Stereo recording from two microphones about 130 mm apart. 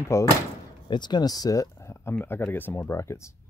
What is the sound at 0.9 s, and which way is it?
Speech, 35° left (ahead or behind).